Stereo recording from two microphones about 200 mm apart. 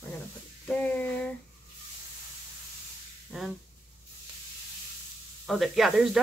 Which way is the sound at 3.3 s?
Centre (ahead or behind).